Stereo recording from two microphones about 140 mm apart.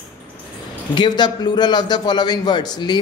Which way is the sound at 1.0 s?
30° left (ahead or behind).